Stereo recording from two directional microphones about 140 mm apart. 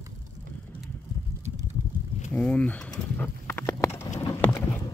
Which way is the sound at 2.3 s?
10° left (ahead or behind).